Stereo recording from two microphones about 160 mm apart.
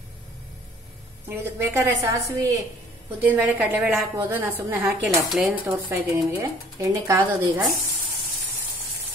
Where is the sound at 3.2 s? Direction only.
10° right (ahead or behind).